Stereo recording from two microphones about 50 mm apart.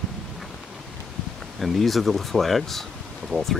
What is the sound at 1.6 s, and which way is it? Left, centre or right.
Speech, centre.